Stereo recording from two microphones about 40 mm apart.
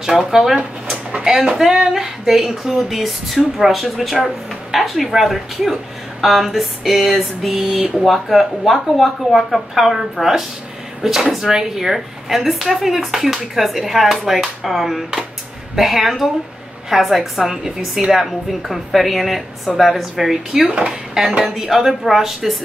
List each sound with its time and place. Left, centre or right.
0.0 s female singing: centre
0.8 s a sound: right
1.7 s female singing: centre
3.5 s speech: centre
20.7 s speech: right
21.5 s female singing: centre